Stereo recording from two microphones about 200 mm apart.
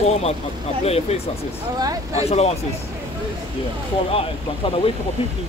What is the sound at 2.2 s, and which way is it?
Speech, 30° left (ahead or behind).